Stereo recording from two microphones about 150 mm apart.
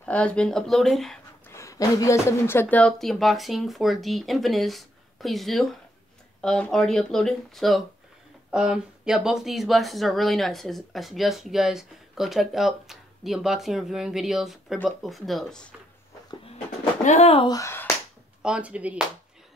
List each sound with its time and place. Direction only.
0.0 s speech: 10° left (ahead or behind)
1.5 s speech: 20° left (ahead or behind); by 15.6 s centre (ahead or behind)
17.0 s speech: 50° left (ahead or behind)
17.4 s speech: 25° left (ahead or behind)
18.4 s speech: 5° right (ahead or behind)